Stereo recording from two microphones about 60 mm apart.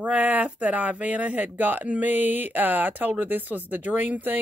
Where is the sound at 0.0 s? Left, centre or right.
Right.